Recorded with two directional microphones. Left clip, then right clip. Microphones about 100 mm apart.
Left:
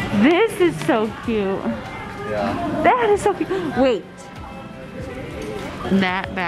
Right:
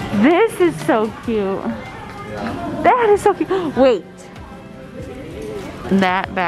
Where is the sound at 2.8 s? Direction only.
20° right (ahead or behind).